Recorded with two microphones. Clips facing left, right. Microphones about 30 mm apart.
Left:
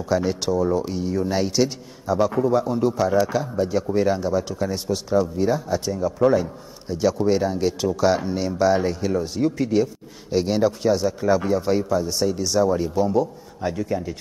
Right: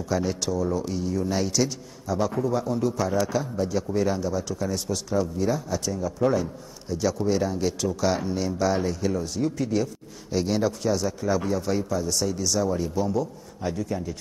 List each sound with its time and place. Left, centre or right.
0.1 s a man's voice: centre